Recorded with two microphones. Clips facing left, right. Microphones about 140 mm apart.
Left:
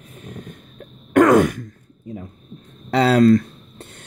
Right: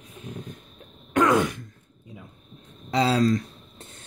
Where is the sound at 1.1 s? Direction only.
50° left (ahead or behind).